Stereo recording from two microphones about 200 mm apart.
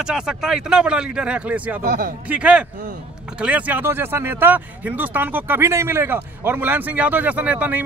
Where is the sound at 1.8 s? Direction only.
50° right (ahead or behind).